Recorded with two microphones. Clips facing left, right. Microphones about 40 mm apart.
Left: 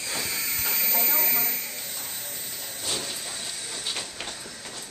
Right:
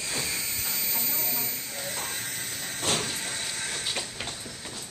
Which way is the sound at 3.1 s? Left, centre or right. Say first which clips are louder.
Right 3 dB; right.